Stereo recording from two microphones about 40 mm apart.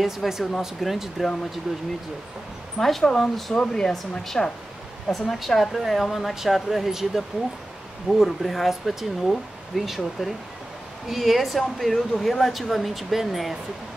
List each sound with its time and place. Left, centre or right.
0.0 s speech: centre
2.8 s speech: centre
3.5 s speech: centre
5.1 s speech: centre